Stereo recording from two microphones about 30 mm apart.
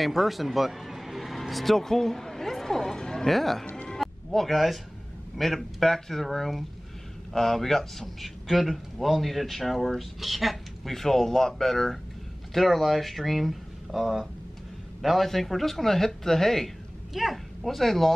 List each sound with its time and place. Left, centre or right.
0.0 s speech: centre
3.0 s music: left
3.3 s speech: centre
4.0 s music: centre
5.4 s speech: centre
8.2 s speech: centre
10.9 s a man's voice: centre
17.1 s speech: centre
17.6 s speech: centre